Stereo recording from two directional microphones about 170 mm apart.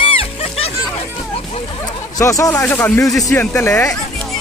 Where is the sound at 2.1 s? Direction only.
20° left (ahead or behind).